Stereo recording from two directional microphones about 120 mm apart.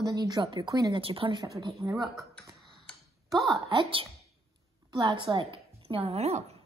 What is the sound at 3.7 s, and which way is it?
A woman's voice, 45° right (ahead or behind).